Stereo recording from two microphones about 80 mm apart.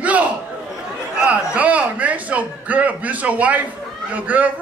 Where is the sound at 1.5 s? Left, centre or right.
Centre.